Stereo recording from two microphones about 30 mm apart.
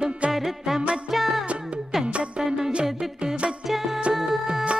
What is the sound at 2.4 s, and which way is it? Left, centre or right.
Music, centre.